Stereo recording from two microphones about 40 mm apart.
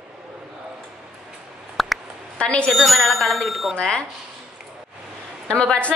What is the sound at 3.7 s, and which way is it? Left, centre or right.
Speech, left.